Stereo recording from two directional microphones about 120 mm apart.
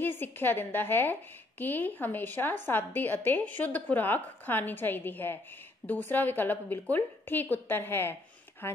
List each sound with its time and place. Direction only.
0.0 s a woman's voice: 15° left (ahead or behind)